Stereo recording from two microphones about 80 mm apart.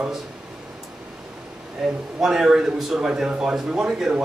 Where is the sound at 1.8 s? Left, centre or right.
Centre.